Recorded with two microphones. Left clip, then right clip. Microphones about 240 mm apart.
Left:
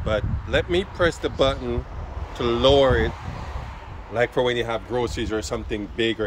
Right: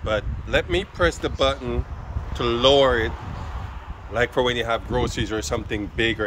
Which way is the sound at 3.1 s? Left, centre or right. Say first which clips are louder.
Left 1 dB; left.